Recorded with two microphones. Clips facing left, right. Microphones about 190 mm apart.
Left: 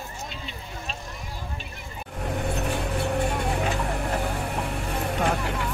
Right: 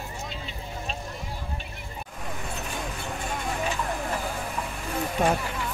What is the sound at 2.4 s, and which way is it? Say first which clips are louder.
Vehicle: left 7 dB; 65° left (ahead or behind).